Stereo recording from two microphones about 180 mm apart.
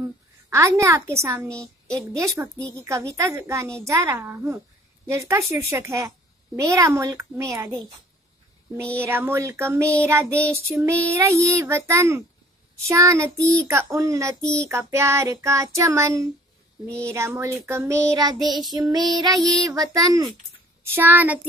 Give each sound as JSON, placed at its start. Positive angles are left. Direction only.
{"t": 0.0, "sound": "a woman's voice", "side_deg": -15}
{"t": 9.0, "sound": "a woman's voice", "side_deg": -15}
{"t": 19.2, "sound": "child singing", "side_deg": 0}
{"t": 19.7, "sound": "a woman's voice", "side_deg": -20}